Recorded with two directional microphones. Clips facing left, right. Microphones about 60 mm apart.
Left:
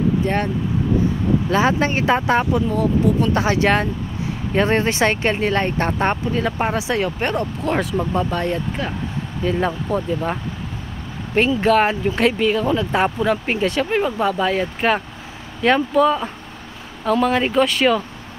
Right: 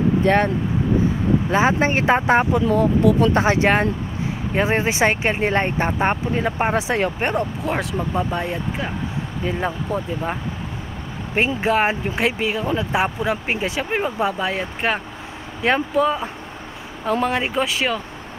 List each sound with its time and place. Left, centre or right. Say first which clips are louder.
0.2 s speech: right 4 dB; right
1.5 s speech: even; right
4.6 s speech: left 2 dB; centre
6.2 s speech: even; right
7.2 s speech: even; centre
7.6 s speech: left 3 dB; centre
9.7 s speech: left 3 dB; centre
11.6 s speech: left 3 dB; centre